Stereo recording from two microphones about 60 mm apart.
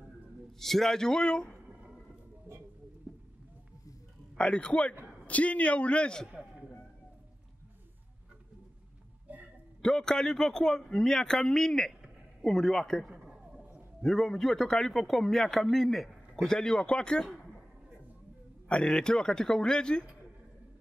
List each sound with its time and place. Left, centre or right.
0.5 s speech: centre
3.1 s a sound: centre
4.4 s a man's voice: centre
6.2 s a sound: centre
9.3 s a sound: right
9.8 s a man's voice: centre
13.3 s chop: centre
14.0 s a man's voice: centre
16.4 s speech: centre
18.7 s speech: centre